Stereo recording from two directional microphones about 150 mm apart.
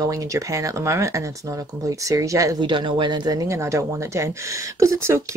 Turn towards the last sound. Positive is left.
turn(degrees=-20)  # may be behind; listen again after turning